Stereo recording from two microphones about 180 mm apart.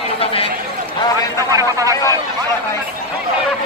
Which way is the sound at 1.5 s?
20° right (ahead or behind).